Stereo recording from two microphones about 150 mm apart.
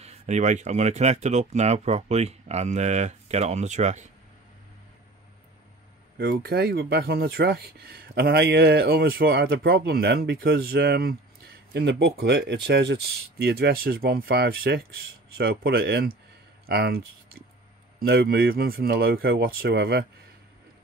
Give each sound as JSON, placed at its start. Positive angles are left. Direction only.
{"t": 0.0, "sound": "speech", "side_deg": -50}
{"t": 6.1, "sound": "speech", "side_deg": -90}